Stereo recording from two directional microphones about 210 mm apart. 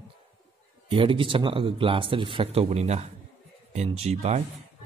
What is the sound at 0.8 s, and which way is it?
Speech, 25° right (ahead or behind).